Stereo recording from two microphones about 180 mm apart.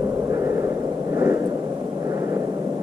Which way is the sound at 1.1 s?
15° right (ahead or behind).